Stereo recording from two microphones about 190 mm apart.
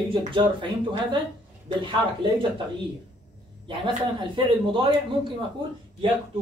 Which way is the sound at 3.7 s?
25° right (ahead or behind).